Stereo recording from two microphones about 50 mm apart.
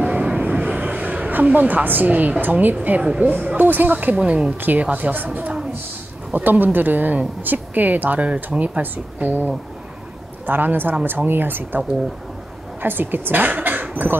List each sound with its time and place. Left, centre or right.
0.0 s a sound: right
2.4 s speech: right
3.0 s a woman's voice: centre
3.5 s speech: right
4.2 s speech: right
4.6 s speech: right
8.9 s speech: right
12.8 s a woman's voice: right